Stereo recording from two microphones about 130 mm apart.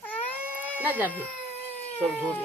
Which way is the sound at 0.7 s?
15° right (ahead or behind).